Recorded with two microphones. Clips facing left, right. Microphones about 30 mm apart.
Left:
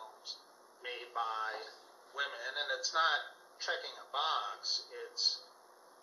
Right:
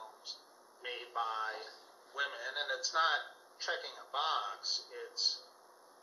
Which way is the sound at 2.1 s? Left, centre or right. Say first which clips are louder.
Even; centre.